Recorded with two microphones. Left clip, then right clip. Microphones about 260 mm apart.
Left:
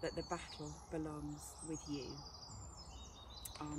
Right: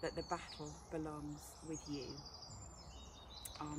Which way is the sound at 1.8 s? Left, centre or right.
Right.